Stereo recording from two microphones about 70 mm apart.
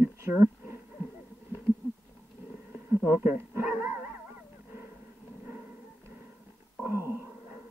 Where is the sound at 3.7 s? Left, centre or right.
Right.